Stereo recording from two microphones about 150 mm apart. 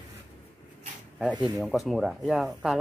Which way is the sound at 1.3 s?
30° right (ahead or behind).